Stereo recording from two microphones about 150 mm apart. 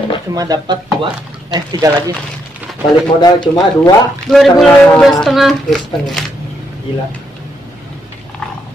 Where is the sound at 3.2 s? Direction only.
25° left (ahead or behind).